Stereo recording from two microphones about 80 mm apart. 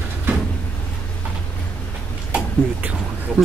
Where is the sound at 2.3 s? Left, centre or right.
Centre.